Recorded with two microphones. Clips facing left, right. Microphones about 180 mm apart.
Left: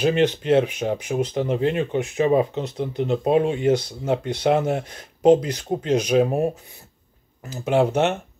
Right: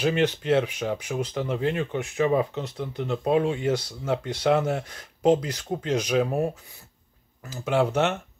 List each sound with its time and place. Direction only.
0.0 s speech: 20° left (ahead or behind)